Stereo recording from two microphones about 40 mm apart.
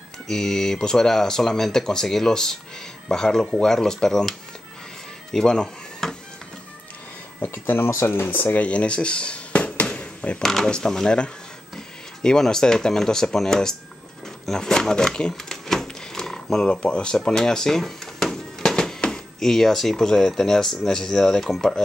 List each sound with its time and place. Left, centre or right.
0.3 s speech: centre
5.3 s a sound: centre
7.4 s speech: left
8.5 s a sound: left
10.4 s speech: centre
12.2 s speech: centre
15.5 s door: centre
16.6 s a sound: left
18.9 s speech: centre